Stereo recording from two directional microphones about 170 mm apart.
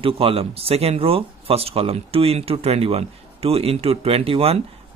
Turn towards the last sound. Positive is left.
turn(degrees=-35)  # may be behind; listen again after turning